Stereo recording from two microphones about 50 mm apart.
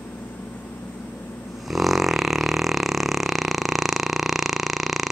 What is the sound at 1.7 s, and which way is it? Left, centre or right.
Burping, centre.